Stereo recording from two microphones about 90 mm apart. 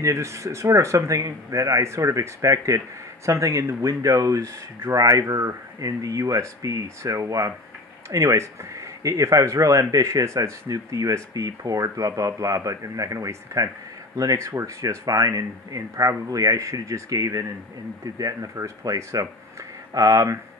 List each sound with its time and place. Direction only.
0.0 s speech: 35° right (ahead or behind)